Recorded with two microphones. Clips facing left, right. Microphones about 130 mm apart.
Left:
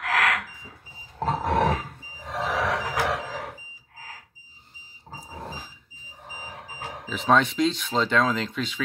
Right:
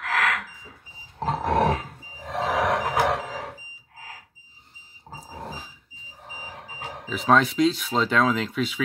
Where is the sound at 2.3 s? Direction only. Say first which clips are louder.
Right 3 dB; 55° right (ahead or behind).